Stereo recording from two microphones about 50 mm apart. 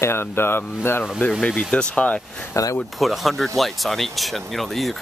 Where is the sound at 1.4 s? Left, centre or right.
Left.